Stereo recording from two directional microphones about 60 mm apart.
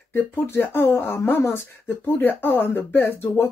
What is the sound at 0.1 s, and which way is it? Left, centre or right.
Speech, left.